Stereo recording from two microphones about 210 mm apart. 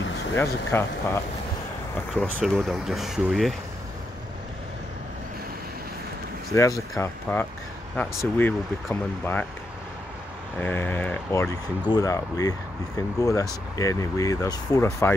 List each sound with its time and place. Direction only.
0.4 s speech: 10° left (ahead or behind)
2.2 s speech: 10° right (ahead or behind)
6.5 s speech: 15° left (ahead or behind)
10.6 s speech: 10° left (ahead or behind)